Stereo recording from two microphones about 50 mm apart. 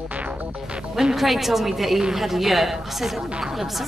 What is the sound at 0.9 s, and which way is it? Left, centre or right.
A woman's voice, centre.